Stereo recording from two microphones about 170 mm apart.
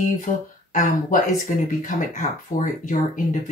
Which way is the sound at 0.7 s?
50° left (ahead or behind).